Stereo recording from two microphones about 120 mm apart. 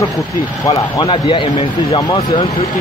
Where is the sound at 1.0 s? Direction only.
45° left (ahead or behind).